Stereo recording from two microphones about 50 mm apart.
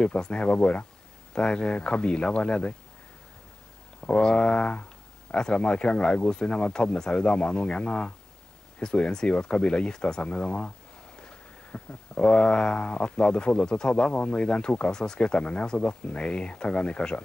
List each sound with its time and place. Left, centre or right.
0.0 s speech: left
4.2 s speech: centre